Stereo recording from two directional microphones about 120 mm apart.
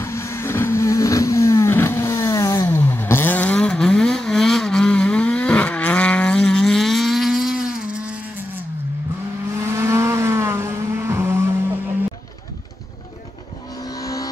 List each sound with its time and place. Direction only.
0.0 s vehicle: 25° left (ahead or behind); by 8.5 s 10° right (ahead or behind)
9.6 s vehicle: 25° right (ahead or behind)
13.8 s vehicle: 30° left (ahead or behind)